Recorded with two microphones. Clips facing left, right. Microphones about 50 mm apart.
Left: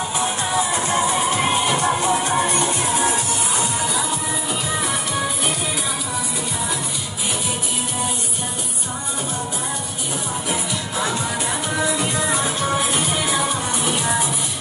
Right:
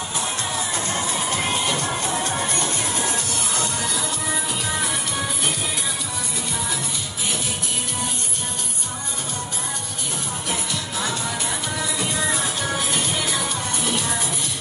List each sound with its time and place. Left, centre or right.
0.7 s music: centre
12.9 s music: centre